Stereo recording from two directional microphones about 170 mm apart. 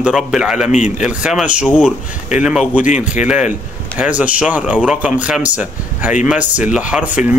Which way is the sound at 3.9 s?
10° right (ahead or behind).